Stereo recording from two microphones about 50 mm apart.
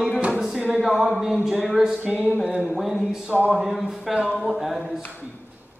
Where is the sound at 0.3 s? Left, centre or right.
Centre.